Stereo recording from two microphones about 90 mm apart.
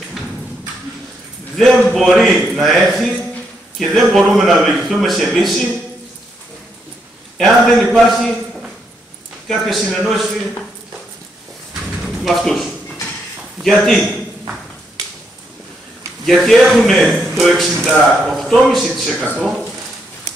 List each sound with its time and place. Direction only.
1.6 s speech: 5° left (ahead or behind)
7.3 s speech: centre (ahead or behind)
9.5 s speech: centre (ahead or behind)
12.0 s a sound: centre (ahead or behind)
13.6 s a man's voice: centre (ahead or behind)
16.3 s speech: centre (ahead or behind)
19.1 s speech: 20° right (ahead or behind)